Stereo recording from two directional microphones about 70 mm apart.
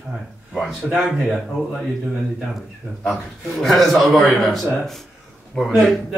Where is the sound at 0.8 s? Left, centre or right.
Centre.